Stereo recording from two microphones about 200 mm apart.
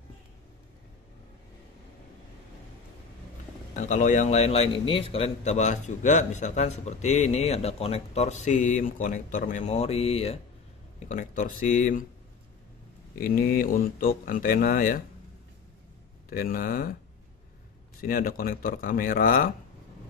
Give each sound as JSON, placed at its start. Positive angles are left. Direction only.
{"t": 3.7, "sound": "a man's voice", "side_deg": 35}
{"t": 11.1, "sound": "a man's voice", "side_deg": 40}
{"t": 13.2, "sound": "speech", "side_deg": 45}
{"t": 16.3, "sound": "speech", "side_deg": 45}
{"t": 18.0, "sound": "speech", "side_deg": 45}